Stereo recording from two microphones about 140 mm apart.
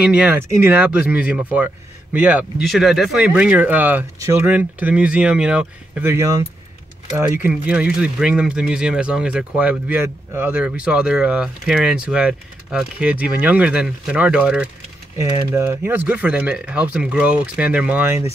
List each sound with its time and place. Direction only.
0.0 s speech: 5° right (ahead or behind)
2.6 s speech: centre (ahead or behind)
6.1 s speech: 25° right (ahead or behind)
7.2 s speech: 10° right (ahead or behind)
15.1 s speech: 25° right (ahead or behind)